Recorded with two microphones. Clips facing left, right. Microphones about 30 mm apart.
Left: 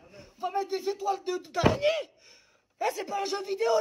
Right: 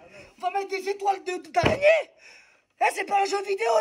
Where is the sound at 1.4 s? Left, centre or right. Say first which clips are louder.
Right 3 dB; right.